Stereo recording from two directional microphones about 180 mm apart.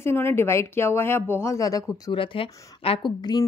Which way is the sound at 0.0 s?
15° left (ahead or behind).